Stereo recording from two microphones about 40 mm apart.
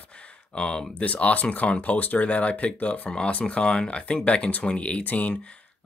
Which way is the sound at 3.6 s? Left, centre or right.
Left.